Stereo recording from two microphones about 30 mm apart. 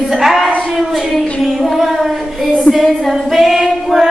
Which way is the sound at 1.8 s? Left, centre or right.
Centre.